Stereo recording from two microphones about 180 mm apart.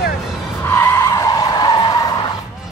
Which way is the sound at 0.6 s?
15° left (ahead or behind).